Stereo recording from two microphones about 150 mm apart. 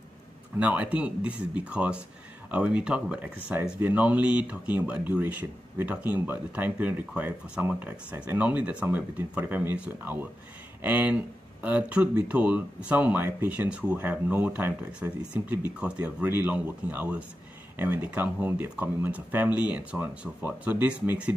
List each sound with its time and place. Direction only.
0.6 s speech: 10° right (ahead or behind)